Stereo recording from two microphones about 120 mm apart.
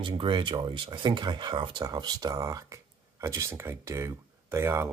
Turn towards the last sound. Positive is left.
turn(degrees=-20)  # may be behind; listen again after turning